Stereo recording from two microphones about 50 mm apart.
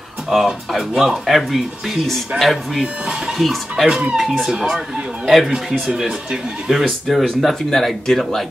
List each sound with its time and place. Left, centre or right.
0.3 s speech: centre
2.8 s speech: centre
3.3 s speech: centre
3.8 s speech: centre
7.1 s speech: centre